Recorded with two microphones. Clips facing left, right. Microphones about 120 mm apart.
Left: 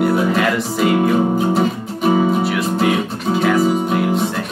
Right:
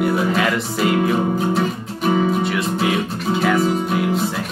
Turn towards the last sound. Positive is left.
turn(degrees=0)  # may be behind; listen again after turning